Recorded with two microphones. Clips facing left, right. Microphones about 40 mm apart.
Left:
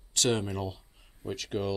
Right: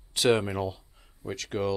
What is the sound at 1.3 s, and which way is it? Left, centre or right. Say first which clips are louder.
Speech: right 3 dB; centre.